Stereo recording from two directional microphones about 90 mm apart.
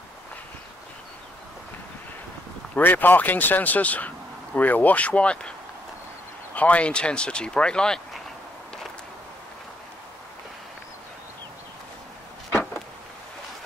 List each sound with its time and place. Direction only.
2.7 s speech: 20° left (ahead or behind)
6.5 s speech: 15° left (ahead or behind)